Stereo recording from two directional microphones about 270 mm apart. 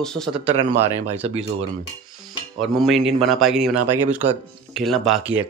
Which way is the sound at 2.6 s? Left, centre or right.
Centre.